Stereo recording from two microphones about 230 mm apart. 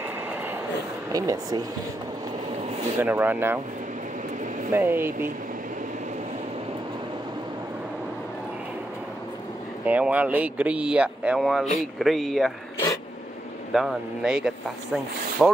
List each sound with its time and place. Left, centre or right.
1.1 s speech: centre
3.0 s speech: centre
4.7 s speech: centre
9.8 s speech: centre
13.7 s speech: centre